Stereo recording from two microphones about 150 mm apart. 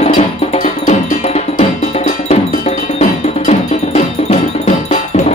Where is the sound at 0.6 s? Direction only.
60° left (ahead or behind).